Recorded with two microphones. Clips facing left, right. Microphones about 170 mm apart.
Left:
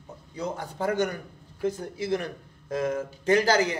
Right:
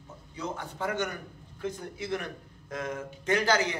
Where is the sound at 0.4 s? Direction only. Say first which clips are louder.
Left 4 dB; 35° left (ahead or behind).